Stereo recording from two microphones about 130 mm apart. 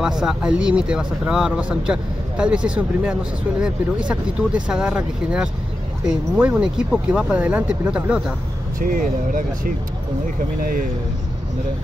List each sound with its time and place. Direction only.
0.0 s speech: 5° right (ahead or behind)
8.7 s speech: 90° right